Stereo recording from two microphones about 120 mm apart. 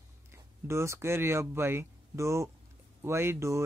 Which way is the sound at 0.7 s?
20° right (ahead or behind).